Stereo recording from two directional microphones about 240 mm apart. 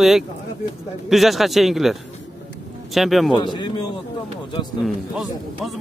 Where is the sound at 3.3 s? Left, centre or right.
Centre.